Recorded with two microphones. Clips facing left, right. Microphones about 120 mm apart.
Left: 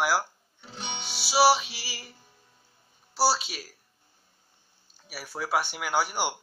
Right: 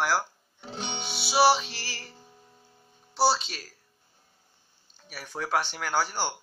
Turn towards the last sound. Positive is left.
turn(degrees=10)  # may be behind; listen again after turning